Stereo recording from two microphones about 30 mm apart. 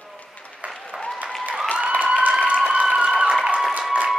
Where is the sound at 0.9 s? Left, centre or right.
Right.